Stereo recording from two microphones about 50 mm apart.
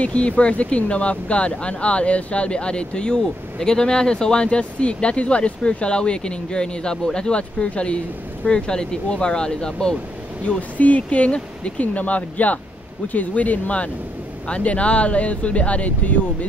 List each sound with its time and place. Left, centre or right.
0.0 s speech: left
10.8 s speech: left